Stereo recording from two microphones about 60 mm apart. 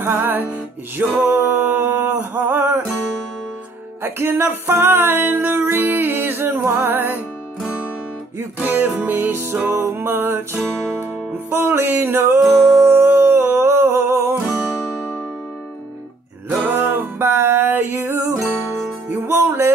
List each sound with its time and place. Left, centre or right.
0.0 s music: right
4.0 s music: right
8.5 s music: right
16.4 s music: right